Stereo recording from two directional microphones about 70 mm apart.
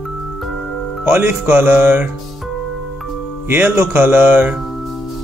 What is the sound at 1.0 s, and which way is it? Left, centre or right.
Speech, right.